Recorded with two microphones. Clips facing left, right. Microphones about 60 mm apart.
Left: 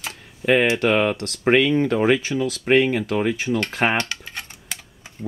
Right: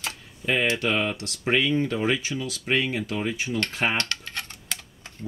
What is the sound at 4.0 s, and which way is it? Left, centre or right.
Typing, centre.